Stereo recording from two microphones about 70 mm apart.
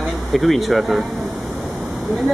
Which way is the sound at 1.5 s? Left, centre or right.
Centre.